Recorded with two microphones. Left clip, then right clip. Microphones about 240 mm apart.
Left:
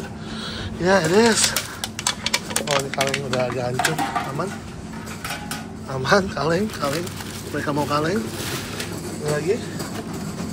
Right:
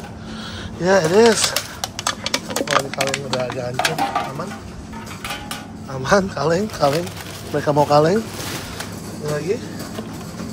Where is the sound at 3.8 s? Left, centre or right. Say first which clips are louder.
Right 4 dB; right.